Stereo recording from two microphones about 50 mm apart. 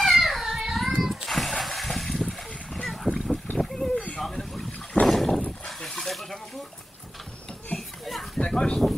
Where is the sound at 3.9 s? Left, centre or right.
Left.